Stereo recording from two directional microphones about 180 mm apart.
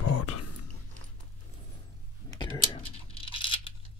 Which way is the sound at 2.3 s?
25° left (ahead or behind).